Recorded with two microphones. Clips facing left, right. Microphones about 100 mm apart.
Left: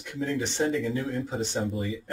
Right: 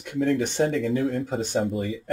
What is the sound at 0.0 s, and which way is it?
Speech, 55° right (ahead or behind).